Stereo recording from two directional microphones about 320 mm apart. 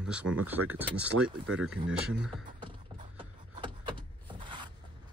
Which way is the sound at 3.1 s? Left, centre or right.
Centre.